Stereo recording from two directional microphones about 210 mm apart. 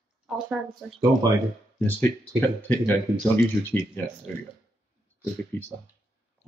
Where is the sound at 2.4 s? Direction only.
10° left (ahead or behind).